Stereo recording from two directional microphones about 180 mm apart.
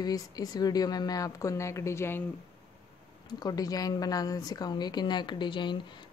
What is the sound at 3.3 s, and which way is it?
Speech, 20° left (ahead or behind).